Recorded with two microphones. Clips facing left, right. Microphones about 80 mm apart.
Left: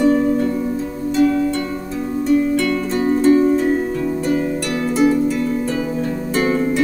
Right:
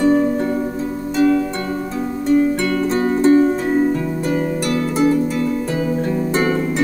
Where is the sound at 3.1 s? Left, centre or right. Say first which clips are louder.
Left 1 dB; right.